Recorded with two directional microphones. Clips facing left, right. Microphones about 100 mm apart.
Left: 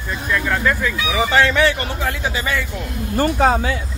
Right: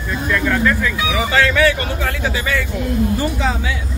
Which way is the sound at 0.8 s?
20° left (ahead or behind).